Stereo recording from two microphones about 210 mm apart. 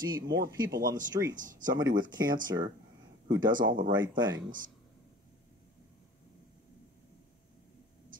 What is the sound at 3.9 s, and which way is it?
Speech, 20° right (ahead or behind).